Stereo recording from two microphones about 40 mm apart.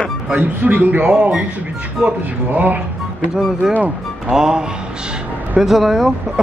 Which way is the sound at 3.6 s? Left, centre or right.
Centre.